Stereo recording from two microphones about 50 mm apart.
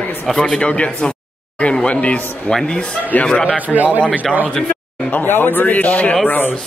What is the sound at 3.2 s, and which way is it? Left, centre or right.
Speech, centre.